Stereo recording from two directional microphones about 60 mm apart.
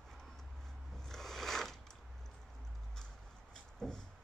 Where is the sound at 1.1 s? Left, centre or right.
Centre.